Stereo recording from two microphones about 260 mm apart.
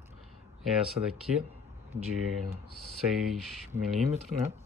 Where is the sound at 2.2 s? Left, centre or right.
Right.